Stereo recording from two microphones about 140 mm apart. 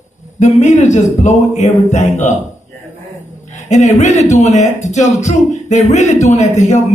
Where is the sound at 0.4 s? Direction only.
60° left (ahead or behind).